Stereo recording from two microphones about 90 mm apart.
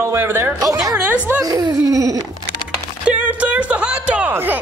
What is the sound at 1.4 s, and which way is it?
Laughter, 40° right (ahead or behind).